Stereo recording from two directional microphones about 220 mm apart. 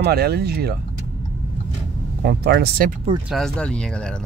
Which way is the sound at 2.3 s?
45° right (ahead or behind).